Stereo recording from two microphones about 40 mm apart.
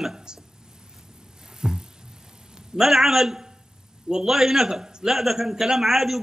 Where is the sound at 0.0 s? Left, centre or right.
Centre.